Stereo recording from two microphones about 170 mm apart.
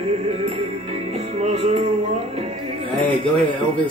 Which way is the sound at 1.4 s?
35° right (ahead or behind).